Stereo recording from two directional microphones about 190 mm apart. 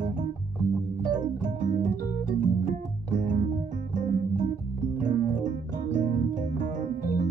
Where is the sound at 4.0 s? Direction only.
40° right (ahead or behind).